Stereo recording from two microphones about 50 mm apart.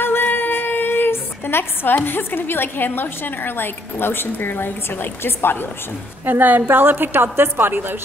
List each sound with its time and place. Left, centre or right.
0.0 s a sound: left
2.0 s a woman's voice: left
6.2 s a woman's voice: right